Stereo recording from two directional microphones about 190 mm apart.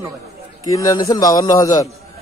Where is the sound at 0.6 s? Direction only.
20° left (ahead or behind).